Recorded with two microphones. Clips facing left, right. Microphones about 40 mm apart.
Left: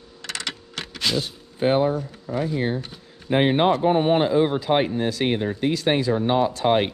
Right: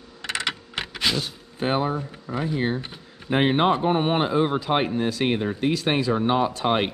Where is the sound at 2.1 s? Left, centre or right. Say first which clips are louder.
Left 2 dB; right.